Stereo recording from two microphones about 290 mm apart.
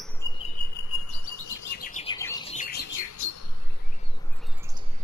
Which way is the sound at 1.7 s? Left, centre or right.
Left.